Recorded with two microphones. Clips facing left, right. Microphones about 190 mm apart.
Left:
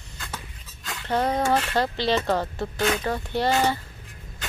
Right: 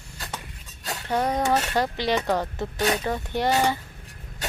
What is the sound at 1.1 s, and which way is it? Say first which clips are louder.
A child's voice: left 1 dB; 15° right (ahead or behind).